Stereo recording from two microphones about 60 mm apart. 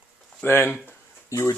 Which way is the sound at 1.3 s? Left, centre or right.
Left.